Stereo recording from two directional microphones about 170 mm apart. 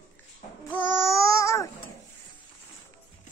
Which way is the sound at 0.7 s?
15° left (ahead or behind).